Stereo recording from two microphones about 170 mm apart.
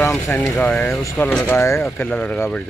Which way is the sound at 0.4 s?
10° left (ahead or behind).